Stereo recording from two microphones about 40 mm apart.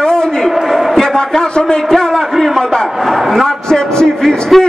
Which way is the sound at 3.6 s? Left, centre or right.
Centre.